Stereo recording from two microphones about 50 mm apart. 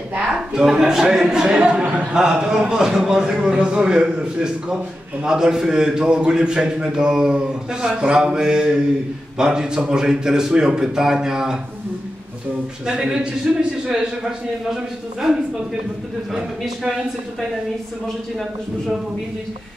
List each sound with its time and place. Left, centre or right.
0.6 s a man's voice: centre
12.8 s a man's voice: centre